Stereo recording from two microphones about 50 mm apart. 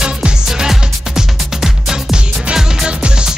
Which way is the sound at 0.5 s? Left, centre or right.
Centre.